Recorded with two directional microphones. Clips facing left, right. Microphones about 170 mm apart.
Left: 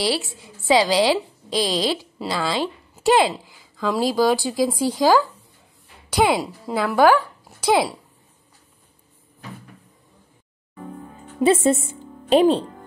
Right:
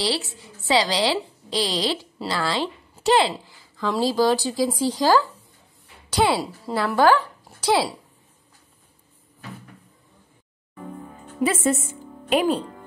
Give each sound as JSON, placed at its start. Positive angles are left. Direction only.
{"t": 0.7, "sound": "a woman's voice", "side_deg": 15}
{"t": 7.0, "sound": "speech", "side_deg": 10}
{"t": 11.3, "sound": "a woman's voice", "side_deg": 25}